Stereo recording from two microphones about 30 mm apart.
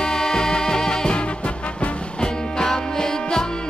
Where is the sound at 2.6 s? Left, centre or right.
Centre.